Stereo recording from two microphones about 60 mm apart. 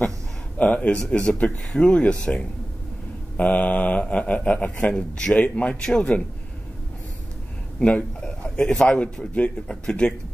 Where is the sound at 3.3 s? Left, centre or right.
Left.